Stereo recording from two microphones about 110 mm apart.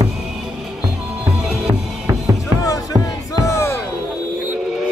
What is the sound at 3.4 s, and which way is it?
Music, 25° left (ahead or behind).